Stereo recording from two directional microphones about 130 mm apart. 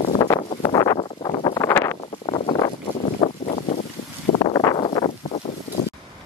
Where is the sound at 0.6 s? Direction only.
30° left (ahead or behind).